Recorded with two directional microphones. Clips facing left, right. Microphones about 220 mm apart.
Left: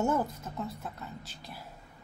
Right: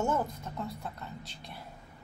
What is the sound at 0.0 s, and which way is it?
A woman's voice, 10° left (ahead or behind).